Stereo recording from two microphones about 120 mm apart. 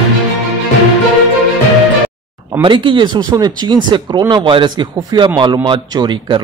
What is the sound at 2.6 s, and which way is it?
Speech, 45° right (ahead or behind).